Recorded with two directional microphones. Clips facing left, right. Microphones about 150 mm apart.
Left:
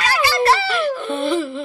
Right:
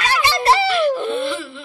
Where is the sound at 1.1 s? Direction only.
40° left (ahead or behind).